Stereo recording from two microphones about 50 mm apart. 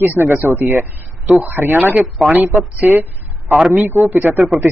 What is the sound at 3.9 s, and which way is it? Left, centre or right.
Speech, right.